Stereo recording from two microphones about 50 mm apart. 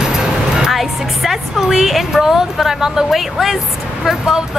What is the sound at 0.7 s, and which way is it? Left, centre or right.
Speech, centre.